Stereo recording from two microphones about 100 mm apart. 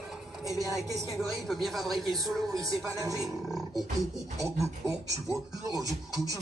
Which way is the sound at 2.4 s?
35° right (ahead or behind).